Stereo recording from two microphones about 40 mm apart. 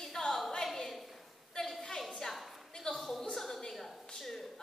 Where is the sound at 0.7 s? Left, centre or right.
Centre.